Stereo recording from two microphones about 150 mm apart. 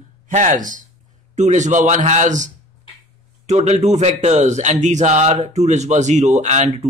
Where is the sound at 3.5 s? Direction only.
50° right (ahead or behind).